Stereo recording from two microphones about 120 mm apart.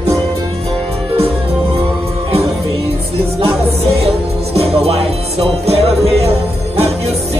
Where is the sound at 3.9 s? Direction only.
55° right (ahead or behind).